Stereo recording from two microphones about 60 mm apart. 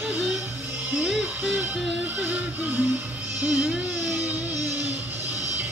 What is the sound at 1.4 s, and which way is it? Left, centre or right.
Music, centre.